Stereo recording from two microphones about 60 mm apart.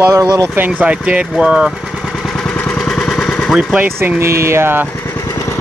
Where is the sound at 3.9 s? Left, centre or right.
Right.